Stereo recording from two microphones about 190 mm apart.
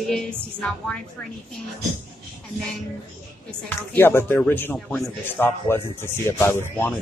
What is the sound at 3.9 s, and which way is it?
Speech, 10° left (ahead or behind).